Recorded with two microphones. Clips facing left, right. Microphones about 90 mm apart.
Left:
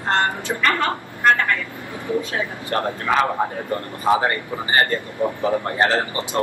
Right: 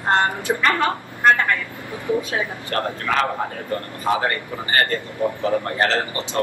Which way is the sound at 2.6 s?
20° left (ahead or behind).